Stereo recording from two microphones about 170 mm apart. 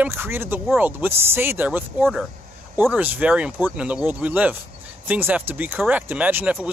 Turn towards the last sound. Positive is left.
turn(degrees=-10)  # may be behind; listen again after turning